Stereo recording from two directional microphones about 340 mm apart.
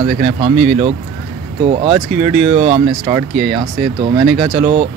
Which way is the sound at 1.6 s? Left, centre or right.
Centre.